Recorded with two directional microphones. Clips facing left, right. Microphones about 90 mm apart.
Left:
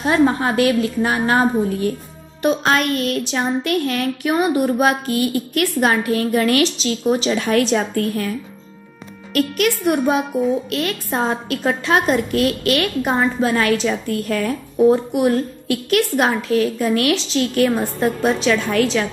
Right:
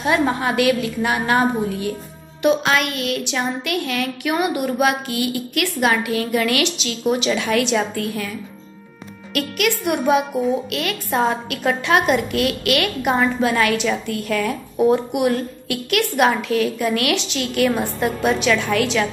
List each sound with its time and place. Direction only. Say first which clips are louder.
0.0 s a woman's voice: left 3 dB; 35° left (ahead or behind)